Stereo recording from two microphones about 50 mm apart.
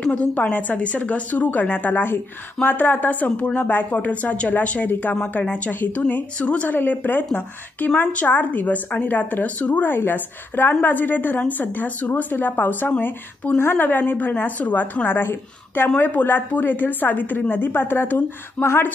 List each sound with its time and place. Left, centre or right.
0.0 s a woman's voice: centre
0.3 s a woman's voice: left
5.7 s a woman's voice: left
6.3 s a woman's voice: left
9.8 s a woman's voice: left
13.8 s a woman's voice: left